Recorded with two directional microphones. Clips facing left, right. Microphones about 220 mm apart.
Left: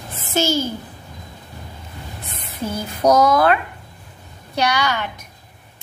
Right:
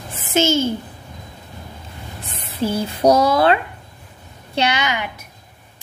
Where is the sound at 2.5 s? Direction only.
30° right (ahead or behind).